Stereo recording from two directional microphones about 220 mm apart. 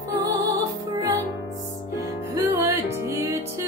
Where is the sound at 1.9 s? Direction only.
15° right (ahead or behind).